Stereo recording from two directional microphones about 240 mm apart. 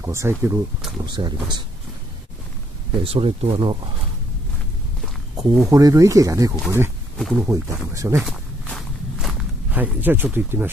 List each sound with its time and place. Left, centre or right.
0.0 s speech: centre
3.0 s speech: right
5.4 s speech: centre
7.2 s speech: centre
7.4 s speech: centre
8.2 s walk: centre